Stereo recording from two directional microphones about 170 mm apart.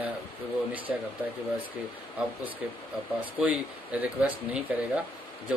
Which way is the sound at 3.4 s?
10° right (ahead or behind).